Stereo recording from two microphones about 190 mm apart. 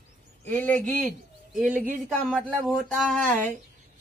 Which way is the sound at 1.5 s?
Centre (ahead or behind).